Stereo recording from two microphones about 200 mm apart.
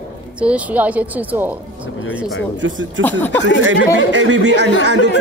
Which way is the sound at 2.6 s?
65° right (ahead or behind).